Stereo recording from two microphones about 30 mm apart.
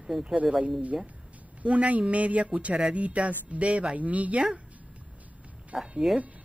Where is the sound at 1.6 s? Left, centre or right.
Right.